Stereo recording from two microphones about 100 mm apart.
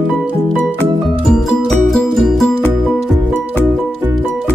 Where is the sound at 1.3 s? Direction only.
5° left (ahead or behind).